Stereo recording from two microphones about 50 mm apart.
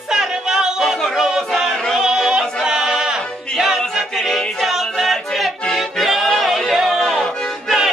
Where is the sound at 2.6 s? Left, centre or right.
Centre.